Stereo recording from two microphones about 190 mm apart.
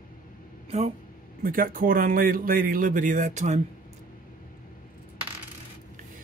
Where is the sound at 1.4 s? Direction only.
50° right (ahead or behind).